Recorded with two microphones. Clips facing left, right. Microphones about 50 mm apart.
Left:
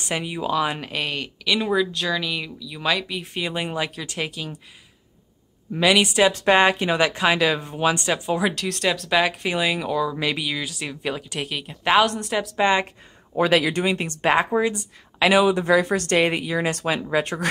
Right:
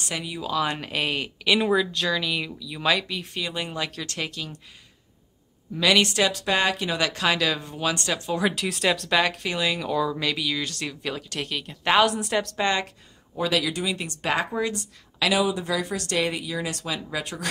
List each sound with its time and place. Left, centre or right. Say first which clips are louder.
0.0 s speech: left 5 dB; left
0.6 s speech: left 2 dB; centre
3.3 s speech: left 4 dB; left
5.8 s speech: left 3 dB; centre
6.3 s speech: left 7 dB; left
8.5 s speech: left 1 dB; centre
10.1 s speech: left 2 dB; centre
12.5 s speech: left 7 dB; left
13.4 s speech: left 6 dB; left
15.4 s speech: left 8 dB; left